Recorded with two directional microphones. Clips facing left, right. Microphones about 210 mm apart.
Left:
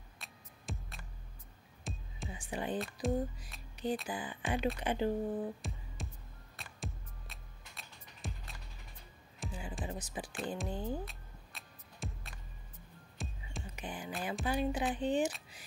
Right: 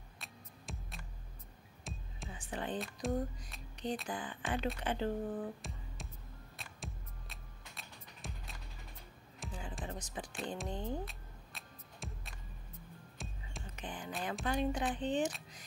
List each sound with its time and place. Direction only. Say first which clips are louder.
0.2 s music: right 2 dB; centre (ahead or behind)
2.2 s music: left 2 dB; 10° left (ahead or behind)
2.8 s speech: left 2 dB; centre (ahead or behind)
6.5 s music: left 4 dB; centre (ahead or behind)
13.7 s speech: left 1 dB; 10° left (ahead or behind)